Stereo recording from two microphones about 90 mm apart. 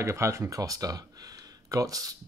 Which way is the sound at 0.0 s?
30° right (ahead or behind).